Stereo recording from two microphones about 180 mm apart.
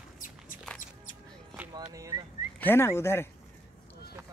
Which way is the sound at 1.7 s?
20° right (ahead or behind).